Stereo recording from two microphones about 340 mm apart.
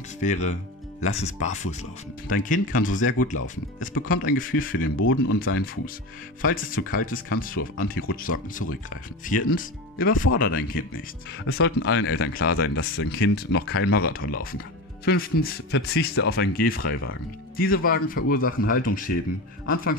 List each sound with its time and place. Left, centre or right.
0.2 s a man's voice: left
4.9 s speech: left
6.4 s a man's voice: left
11.4 s a man's voice: left